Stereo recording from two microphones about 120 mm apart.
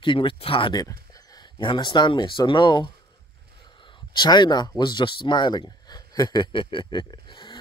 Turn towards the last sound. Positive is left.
turn(degrees=40)  # may be behind; listen again after turning